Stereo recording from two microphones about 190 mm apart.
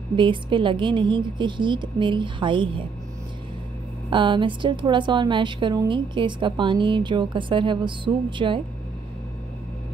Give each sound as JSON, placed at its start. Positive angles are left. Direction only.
{"t": 0.1, "sound": "a woman's voice", "side_deg": -25}
{"t": 4.1, "sound": "a woman's voice", "side_deg": -25}